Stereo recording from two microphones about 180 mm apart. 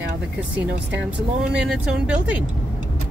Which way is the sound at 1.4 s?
5° right (ahead or behind).